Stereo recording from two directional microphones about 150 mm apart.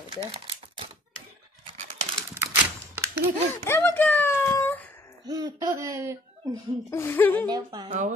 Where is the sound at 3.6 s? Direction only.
15° left (ahead or behind).